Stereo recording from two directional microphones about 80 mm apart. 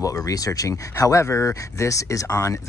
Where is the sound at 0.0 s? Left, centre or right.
Left.